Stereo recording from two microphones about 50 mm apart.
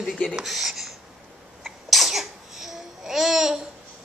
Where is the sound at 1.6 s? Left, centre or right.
Centre.